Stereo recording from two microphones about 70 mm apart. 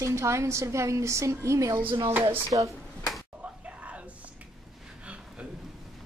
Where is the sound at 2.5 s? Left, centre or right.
Right.